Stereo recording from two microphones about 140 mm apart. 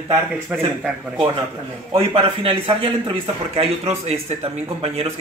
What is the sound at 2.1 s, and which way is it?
Speech, 40° right (ahead or behind).